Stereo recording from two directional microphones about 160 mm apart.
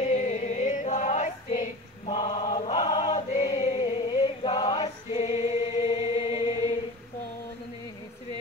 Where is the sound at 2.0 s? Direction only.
30° left (ahead or behind).